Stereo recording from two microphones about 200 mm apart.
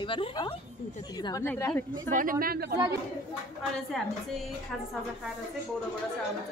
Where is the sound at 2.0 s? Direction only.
45° right (ahead or behind).